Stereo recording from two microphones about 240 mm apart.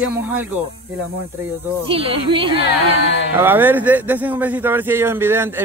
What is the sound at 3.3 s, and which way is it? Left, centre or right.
Speech, centre.